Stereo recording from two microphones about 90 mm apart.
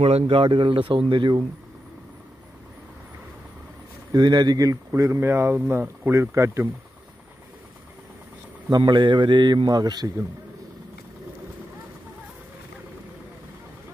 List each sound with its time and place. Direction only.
0.0 s speech: 90° right; by 1.4 s 60° right (ahead or behind)
4.1 s speech: 50° right (ahead or behind); by 6.7 s 30° right (ahead or behind)
8.6 s a man's voice: 55° right (ahead or behind)